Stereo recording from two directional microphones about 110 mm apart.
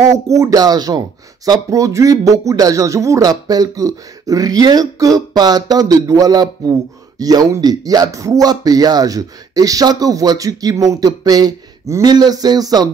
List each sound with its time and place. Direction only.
0.0 s speech: 30° right (ahead or behind)